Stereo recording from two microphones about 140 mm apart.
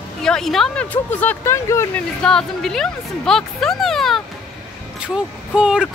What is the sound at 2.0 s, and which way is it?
Speech, 5° left (ahead or behind).